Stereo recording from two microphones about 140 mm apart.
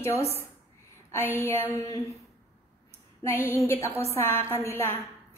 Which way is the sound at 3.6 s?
15° left (ahead or behind).